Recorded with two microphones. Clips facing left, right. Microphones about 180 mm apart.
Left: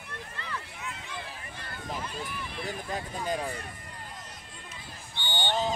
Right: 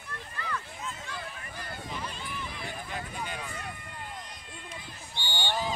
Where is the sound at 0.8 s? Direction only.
70° left (ahead or behind).